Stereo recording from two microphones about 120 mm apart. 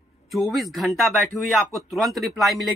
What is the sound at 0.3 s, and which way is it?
Speech, centre (ahead or behind).